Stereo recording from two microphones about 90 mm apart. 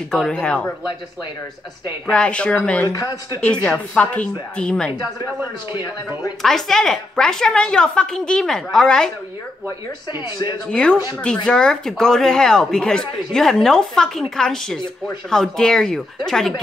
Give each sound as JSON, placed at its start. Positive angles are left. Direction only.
{"t": 0.1, "sound": "speech", "side_deg": 10}
{"t": 2.1, "sound": "speech", "side_deg": 10}
{"t": 2.9, "sound": "speech", "side_deg": 45}
{"t": 3.3, "sound": "speech", "side_deg": 15}
{"t": 6.4, "sound": "speech", "side_deg": 5}
{"t": 10.7, "sound": "speech", "side_deg": 10}